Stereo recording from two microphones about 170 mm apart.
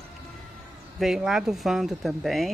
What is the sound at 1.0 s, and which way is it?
Speech, centre (ahead or behind).